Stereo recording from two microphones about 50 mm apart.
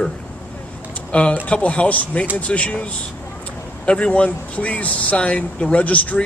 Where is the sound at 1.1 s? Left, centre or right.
Left.